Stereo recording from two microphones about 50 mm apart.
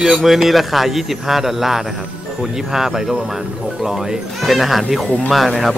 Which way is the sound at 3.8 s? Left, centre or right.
Centre.